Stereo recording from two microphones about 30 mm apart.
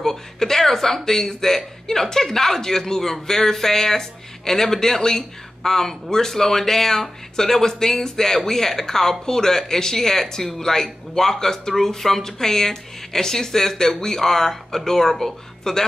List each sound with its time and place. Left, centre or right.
0.0 s speech: centre